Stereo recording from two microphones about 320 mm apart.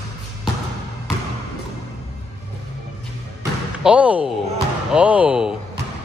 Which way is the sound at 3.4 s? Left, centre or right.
Centre.